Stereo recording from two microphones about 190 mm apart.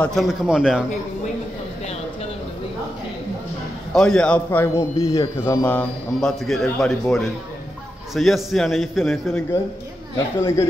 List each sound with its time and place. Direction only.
0.0 s a man's voice: centre (ahead or behind)
3.9 s a man's voice: 5° left (ahead or behind)
10.1 s a man's voice: 15° left (ahead or behind)